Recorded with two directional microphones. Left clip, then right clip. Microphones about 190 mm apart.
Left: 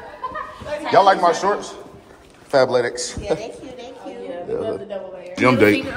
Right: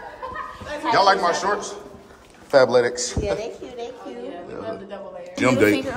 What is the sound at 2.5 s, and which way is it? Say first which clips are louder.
Speech: right 1 dB; 30° right (ahead or behind).